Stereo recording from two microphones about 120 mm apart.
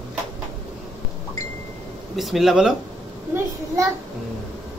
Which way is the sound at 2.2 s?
Centre (ahead or behind).